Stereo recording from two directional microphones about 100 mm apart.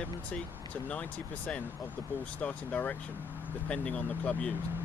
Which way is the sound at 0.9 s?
10° left (ahead or behind).